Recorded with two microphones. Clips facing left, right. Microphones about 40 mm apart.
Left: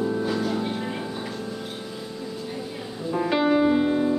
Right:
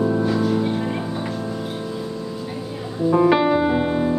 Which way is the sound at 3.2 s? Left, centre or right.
Centre.